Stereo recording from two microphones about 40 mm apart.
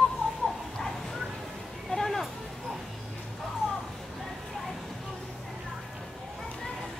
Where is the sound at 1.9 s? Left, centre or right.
Centre.